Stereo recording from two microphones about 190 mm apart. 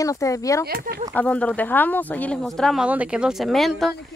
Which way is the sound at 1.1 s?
5° left (ahead or behind).